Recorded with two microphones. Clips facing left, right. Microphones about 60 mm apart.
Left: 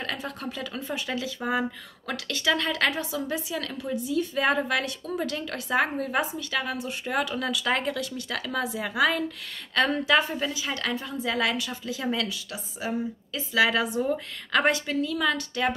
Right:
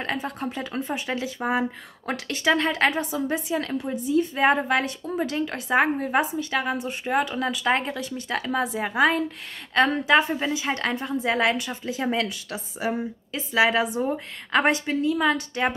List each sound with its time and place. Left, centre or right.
0.0 s a woman's voice: right